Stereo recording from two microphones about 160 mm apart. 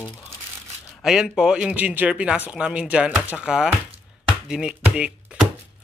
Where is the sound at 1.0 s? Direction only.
5° right (ahead or behind).